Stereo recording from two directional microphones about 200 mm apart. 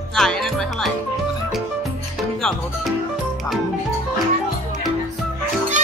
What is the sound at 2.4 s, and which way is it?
Music, 5° left (ahead or behind).